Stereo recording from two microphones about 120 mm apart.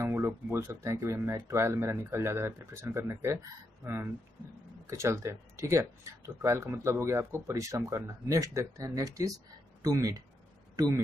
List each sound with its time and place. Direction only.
0.0 s speech: 20° right (ahead or behind)